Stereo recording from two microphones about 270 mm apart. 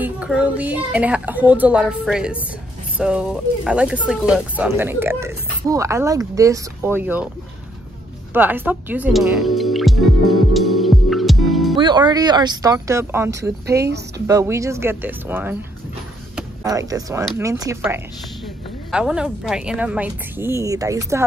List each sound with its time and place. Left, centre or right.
0.0 s a woman's voice: centre
8.3 s music: centre
11.7 s speech: centre
13.7 s speech: right
14.2 s a woman's voice: centre